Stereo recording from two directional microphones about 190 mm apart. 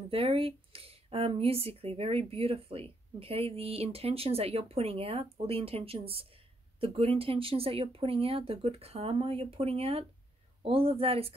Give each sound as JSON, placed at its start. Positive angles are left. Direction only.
{"t": 0.1, "sound": "speech", "side_deg": -30}